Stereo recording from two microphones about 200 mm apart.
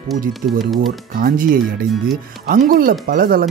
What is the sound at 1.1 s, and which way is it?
Speech, 45° right (ahead or behind).